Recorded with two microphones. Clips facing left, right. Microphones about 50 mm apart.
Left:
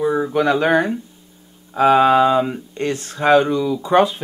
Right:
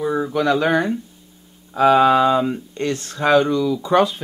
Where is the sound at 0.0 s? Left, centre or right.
Centre.